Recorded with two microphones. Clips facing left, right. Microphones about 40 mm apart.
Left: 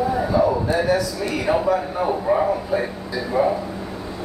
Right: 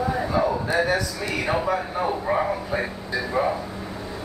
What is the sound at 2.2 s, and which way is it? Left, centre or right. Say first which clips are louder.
Speech: left 4 dB; centre.